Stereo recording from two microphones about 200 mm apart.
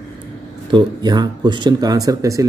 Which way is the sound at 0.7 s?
20° right (ahead or behind).